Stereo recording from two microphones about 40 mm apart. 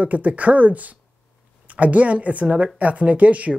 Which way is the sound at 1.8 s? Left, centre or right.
Right.